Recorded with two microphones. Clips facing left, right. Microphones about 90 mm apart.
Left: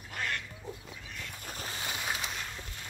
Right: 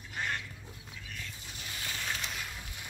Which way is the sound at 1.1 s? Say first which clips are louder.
Left 5 dB; 55° left (ahead or behind).